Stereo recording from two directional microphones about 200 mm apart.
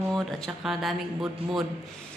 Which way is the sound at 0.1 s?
Centre (ahead or behind).